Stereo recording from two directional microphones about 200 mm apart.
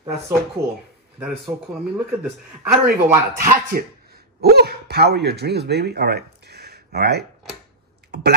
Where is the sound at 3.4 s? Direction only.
45° right (ahead or behind).